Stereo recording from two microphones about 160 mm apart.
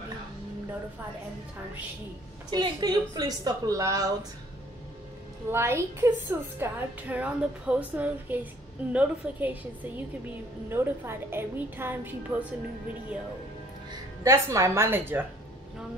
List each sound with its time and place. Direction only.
2.5 s a woman's voice: 25° right (ahead or behind)
5.5 s a woman's voice: 15° right (ahead or behind)